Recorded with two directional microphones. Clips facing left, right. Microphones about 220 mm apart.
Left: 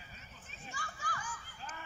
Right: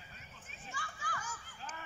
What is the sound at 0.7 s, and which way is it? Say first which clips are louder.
Children playing: even; 40° left (ahead or behind).